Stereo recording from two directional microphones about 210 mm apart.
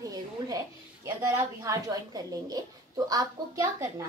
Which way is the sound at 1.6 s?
15° right (ahead or behind).